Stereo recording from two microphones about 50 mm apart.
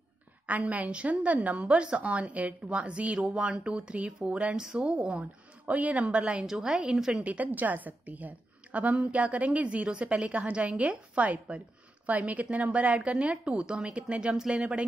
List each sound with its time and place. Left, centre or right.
0.5 s a woman's voice: right
4.6 s a woman's voice: centre
6.4 s a woman's voice: centre
7.2 s a woman's voice: right